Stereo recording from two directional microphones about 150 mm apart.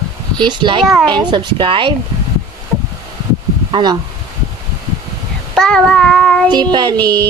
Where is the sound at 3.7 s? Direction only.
30° right (ahead or behind).